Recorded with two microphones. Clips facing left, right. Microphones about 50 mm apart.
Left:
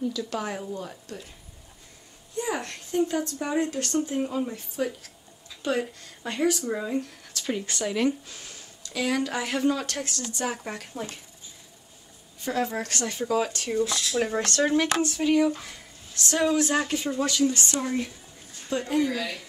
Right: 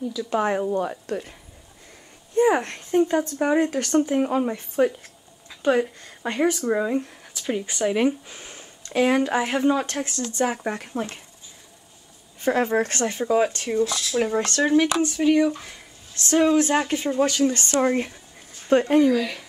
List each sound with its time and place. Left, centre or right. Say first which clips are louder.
0.2 s speech: right 8 dB; right
0.7 s speech: right 11 dB; right
2.3 s speech: right 11 dB; right
5.5 s speech: right 7 dB; right
7.4 s speech: right 5 dB; centre; by 11.1 s right
12.4 s speech: right 7 dB; right